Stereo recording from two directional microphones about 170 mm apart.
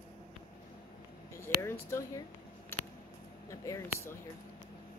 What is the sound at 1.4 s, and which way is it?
Speech, 15° left (ahead or behind).